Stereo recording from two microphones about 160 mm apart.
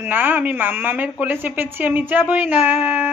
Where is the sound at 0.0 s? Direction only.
10° right (ahead or behind).